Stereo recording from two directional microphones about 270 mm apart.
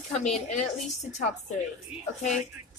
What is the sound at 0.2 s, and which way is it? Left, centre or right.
Speech, left.